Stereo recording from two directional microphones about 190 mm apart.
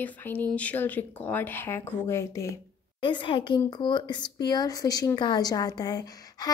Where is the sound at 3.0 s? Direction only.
25° left (ahead or behind).